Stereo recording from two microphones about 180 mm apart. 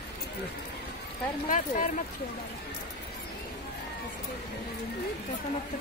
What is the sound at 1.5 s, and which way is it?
Speech, 45° left (ahead or behind).